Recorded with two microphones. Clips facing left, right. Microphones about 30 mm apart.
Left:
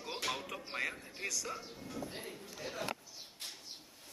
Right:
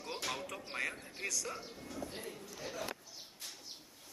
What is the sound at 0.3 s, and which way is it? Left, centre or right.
Music, centre.